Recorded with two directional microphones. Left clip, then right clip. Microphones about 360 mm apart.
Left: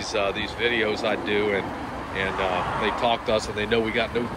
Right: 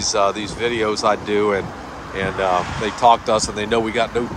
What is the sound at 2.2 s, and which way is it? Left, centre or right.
Speech, right.